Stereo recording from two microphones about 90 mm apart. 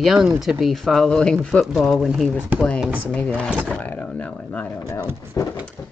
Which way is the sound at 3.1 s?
15° left (ahead or behind).